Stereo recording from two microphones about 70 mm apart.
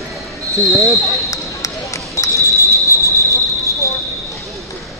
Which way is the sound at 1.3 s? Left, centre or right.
Left.